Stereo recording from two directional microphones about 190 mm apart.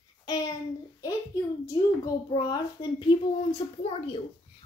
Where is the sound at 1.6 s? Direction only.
20° left (ahead or behind).